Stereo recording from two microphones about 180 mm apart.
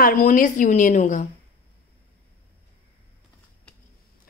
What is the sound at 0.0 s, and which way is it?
A woman's voice, 45° left (ahead or behind).